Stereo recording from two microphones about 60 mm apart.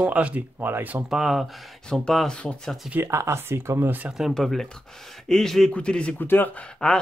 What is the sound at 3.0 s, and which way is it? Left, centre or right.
Speech, right.